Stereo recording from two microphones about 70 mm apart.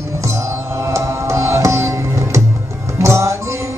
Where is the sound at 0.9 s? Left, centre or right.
Right.